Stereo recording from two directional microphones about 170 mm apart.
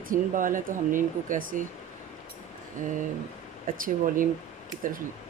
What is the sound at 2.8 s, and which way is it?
Speech, 50° right (ahead or behind).